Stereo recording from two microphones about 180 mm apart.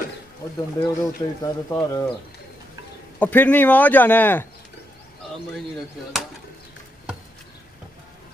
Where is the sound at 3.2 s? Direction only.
10° left (ahead or behind).